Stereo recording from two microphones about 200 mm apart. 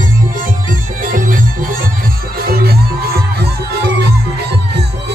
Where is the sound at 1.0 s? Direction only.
45° right (ahead or behind).